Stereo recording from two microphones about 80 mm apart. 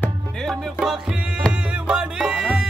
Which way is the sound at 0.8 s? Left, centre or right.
Centre.